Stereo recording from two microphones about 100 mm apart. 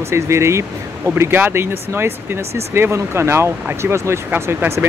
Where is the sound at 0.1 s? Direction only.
30° right (ahead or behind).